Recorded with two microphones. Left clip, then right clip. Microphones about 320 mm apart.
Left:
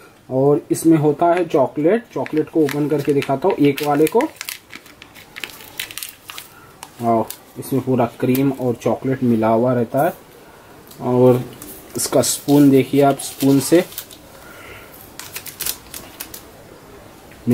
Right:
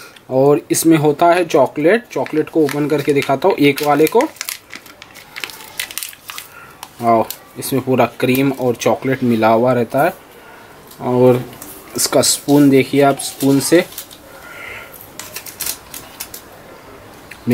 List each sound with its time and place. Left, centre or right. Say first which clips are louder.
0.3 s speech: right 4 dB; centre
0.7 s speech: right 2 dB; centre
4.2 s crumpling: right 3 dB; centre
5.3 s crushing: right 4 dB; centre
7.0 s speech: right 4 dB; centre
12.0 s speech: right 3 dB; centre